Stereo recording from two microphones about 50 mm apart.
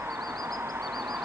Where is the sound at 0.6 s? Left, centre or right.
Right.